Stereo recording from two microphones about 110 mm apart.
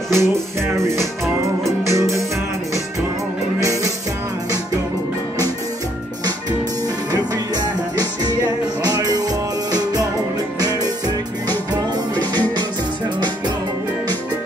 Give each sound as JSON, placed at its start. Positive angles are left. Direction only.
{"t": 0.1, "sound": "music", "side_deg": -25}
{"t": 3.6, "sound": "music", "side_deg": -30}
{"t": 7.1, "sound": "music", "side_deg": -35}